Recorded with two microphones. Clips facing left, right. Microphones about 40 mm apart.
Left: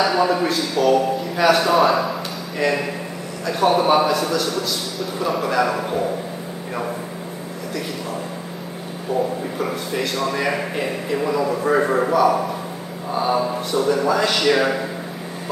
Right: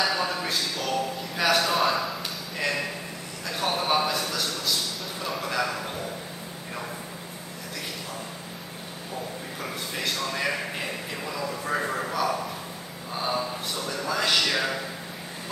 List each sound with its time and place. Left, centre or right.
0.0 s a man's voice: centre
4.1 s a man's voice: centre
9.6 s a man's voice: centre; by 12.1 s left
12.1 s a man's voice: centre
13.7 s a man's voice: centre
14.5 s a man's voice: centre